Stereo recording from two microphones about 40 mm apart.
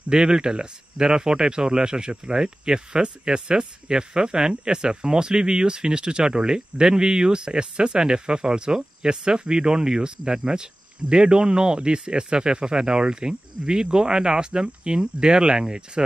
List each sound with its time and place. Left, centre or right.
0.1 s speech: right